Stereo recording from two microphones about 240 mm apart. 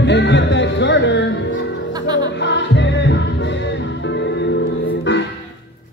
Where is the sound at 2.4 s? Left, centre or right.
Left.